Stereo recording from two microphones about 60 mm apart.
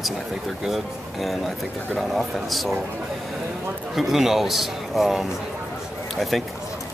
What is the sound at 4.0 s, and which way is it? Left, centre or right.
A man's voice, centre.